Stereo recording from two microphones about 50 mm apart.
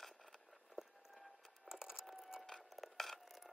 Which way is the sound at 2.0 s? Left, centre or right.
Centre.